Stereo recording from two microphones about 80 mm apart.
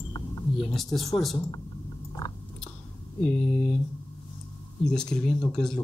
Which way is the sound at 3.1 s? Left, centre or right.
Centre.